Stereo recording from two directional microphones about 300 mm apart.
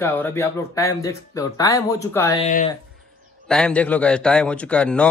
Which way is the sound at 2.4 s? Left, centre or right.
Left.